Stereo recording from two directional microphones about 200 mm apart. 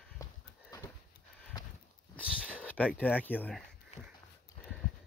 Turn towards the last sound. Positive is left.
turn(degrees=10)  # may be behind; listen again after turning